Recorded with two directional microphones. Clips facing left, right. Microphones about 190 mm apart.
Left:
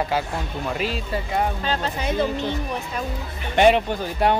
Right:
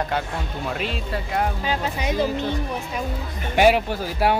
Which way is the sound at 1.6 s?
10° right (ahead or behind).